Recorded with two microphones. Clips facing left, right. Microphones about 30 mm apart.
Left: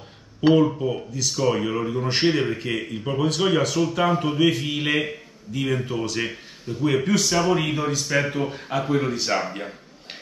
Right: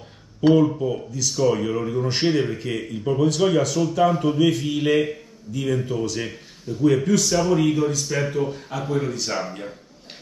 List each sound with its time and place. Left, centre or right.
0.4 s speech: centre